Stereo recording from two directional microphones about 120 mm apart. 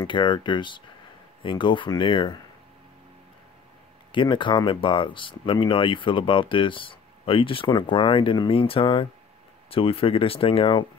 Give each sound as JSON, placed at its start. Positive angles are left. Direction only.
{"t": 0.0, "sound": "speech", "side_deg": 40}
{"t": 4.1, "sound": "speech", "side_deg": 45}